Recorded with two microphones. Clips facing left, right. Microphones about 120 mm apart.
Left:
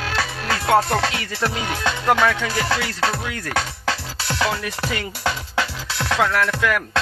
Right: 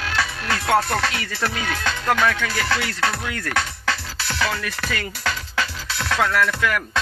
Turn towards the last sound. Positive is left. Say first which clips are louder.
# left 1 dB
turn(degrees=10)  # may be behind; listen again after turning